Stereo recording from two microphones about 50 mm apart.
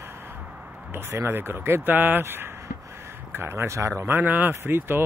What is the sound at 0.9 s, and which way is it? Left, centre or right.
Speech, right.